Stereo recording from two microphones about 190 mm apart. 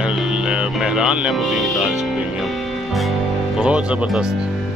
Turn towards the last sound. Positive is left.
turn(degrees=-5)  # may be behind; listen again after turning